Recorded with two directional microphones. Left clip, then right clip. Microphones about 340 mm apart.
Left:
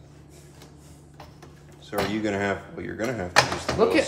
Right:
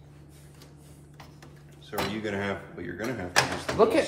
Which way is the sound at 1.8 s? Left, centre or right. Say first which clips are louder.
Left 5 dB; centre.